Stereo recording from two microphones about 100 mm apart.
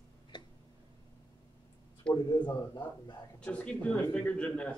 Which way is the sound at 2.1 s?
45° left (ahead or behind).